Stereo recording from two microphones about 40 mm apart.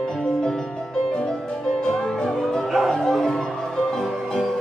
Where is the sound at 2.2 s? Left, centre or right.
Centre.